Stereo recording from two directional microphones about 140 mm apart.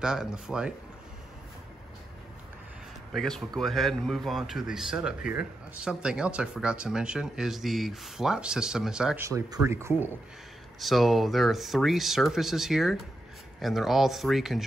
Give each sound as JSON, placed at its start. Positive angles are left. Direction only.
{"t": 0.0, "sound": "speech", "side_deg": -5}
{"t": 3.1, "sound": "speech", "side_deg": 0}
{"t": 9.2, "sound": "speech", "side_deg": -20}
{"t": 10.8, "sound": "speech", "side_deg": 0}